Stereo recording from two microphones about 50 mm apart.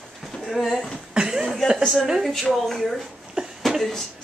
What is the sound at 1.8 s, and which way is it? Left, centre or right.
A woman's voice, centre.